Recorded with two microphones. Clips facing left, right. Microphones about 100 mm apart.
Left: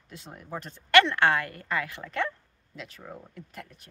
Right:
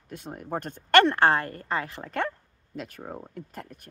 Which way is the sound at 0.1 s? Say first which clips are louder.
Right 6 dB; 50° right (ahead or behind).